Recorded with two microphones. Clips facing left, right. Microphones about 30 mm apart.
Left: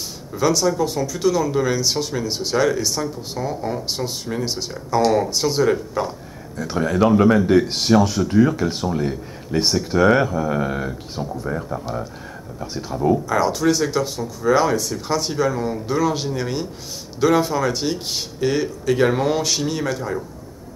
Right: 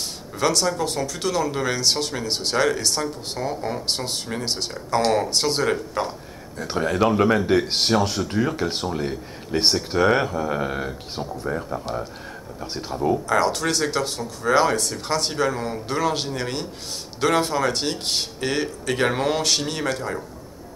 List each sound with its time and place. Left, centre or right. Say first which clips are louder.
0.4 s speech: left 3 dB; right
3.8 s speech: left 1 dB; right
8.9 s speech: left 3 dB; centre
9.6 s speech: left 2 dB; right; by 11.8 s centre
12.9 s speech: left 2 dB; centre
13.4 s speech: left 3 dB; right